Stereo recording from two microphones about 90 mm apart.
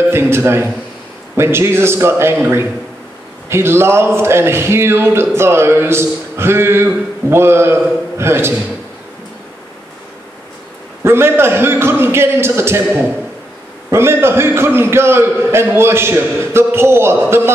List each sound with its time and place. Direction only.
0.1 s a man's voice: 25° right (ahead or behind)
3.4 s a man's voice: 25° right (ahead or behind)
11.1 s a man's voice: 25° right (ahead or behind)
13.8 s a man's voice: 30° right (ahead or behind)